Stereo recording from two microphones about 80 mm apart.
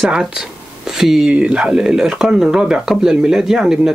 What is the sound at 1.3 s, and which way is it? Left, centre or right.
Speech, centre.